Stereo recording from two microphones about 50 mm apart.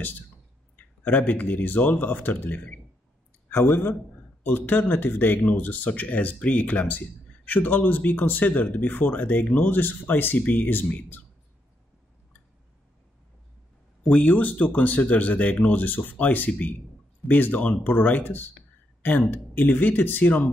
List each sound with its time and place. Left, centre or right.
0.7 s speech: left
4.5 s speech: left
14.1 s speech: centre
14.4 s speech: left